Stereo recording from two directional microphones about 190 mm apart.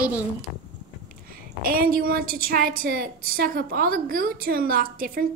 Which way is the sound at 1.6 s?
50° right (ahead or behind).